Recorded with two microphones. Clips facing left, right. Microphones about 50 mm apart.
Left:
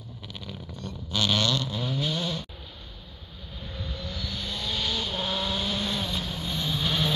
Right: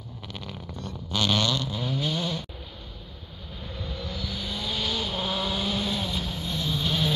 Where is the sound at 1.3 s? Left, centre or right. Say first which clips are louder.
Even; right.